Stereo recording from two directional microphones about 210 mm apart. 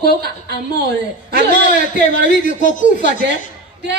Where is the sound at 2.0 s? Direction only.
35° left (ahead or behind).